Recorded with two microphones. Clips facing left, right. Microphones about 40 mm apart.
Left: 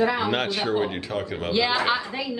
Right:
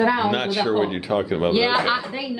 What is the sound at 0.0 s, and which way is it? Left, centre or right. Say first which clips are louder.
Speech: right 3 dB; centre.